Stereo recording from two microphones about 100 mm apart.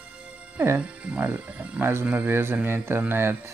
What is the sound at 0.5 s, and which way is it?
Speech, 15° right (ahead or behind).